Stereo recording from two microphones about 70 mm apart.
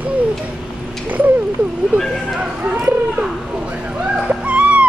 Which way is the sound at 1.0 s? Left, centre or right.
Right.